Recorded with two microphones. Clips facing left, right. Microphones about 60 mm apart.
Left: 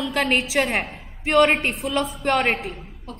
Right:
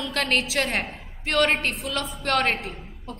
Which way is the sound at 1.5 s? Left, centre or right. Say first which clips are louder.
Left 4 dB; centre.